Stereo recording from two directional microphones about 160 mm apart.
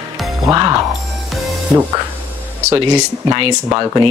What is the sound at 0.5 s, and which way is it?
Speech, 25° right (ahead or behind).